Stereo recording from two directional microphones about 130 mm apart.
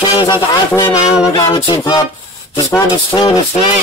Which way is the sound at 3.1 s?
35° left (ahead or behind).